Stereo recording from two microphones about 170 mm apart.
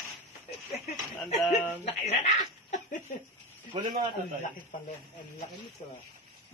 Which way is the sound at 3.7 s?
30° right (ahead or behind).